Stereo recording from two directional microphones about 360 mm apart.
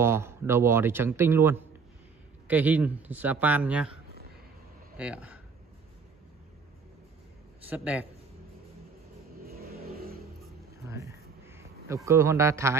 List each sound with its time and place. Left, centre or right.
0.0 s a man's voice: centre
7.7 s speech: centre
9.6 s vehicle: right
10.9 s a sound: centre